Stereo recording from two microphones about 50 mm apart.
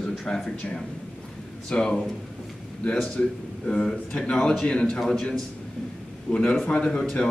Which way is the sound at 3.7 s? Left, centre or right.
Centre.